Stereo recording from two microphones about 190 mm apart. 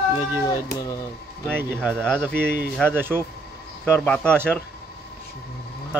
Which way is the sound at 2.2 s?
10° right (ahead or behind).